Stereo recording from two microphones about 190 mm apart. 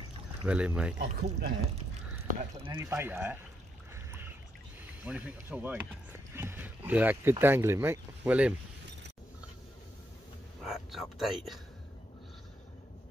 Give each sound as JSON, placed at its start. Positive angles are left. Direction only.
{"t": 0.5, "sound": "speech", "side_deg": -5}
{"t": 0.9, "sound": "speech", "side_deg": -65}
{"t": 2.6, "sound": "speech", "side_deg": -20}
{"t": 3.9, "sound": "boat", "side_deg": -10}
{"t": 5.0, "sound": "speech", "side_deg": -5}
{"t": 10.6, "sound": "speech", "side_deg": 0}